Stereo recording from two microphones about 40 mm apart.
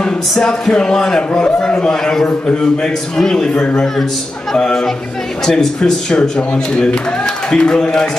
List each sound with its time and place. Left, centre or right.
0.4 s a man's voice: centre
5.4 s a man's voice: centre